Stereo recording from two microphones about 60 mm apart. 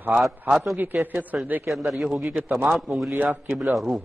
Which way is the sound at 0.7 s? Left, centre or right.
Right.